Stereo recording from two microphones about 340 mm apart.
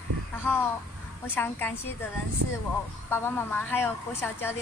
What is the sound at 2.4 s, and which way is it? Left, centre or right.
Speech, right.